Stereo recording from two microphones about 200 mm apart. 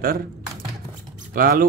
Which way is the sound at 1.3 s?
45° right (ahead or behind).